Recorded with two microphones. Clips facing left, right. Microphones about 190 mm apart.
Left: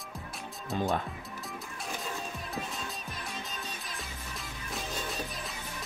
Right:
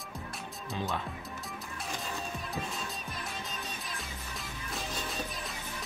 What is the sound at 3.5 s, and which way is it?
Music, centre (ahead or behind).